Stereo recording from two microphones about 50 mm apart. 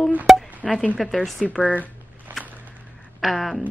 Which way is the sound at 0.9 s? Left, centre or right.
Centre.